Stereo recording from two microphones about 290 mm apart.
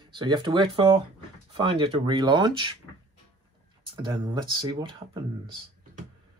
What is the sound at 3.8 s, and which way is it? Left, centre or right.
Speech, centre.